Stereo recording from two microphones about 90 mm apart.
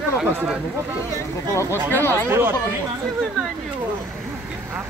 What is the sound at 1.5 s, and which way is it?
Speech, 35° left (ahead or behind).